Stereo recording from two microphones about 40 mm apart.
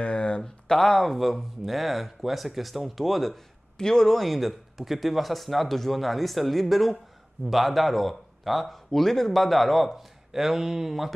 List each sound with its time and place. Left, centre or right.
0.0 s a sound: left
0.4 s speech: centre
3.7 s speech: centre
4.1 s speech: centre